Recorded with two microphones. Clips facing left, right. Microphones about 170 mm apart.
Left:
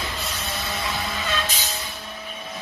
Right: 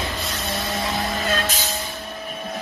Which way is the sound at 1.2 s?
45° right (ahead or behind).